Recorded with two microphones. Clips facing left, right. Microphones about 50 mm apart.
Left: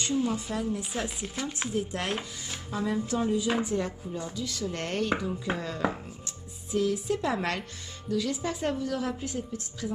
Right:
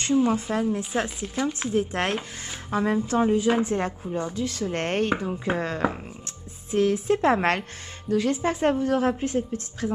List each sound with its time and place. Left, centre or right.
0.1 s speech: right
0.5 s a woman's voice: right
5.8 s speech: centre
6.7 s a woman's voice: right